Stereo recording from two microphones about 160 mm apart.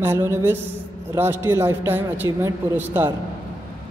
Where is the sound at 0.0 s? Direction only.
15° right (ahead or behind).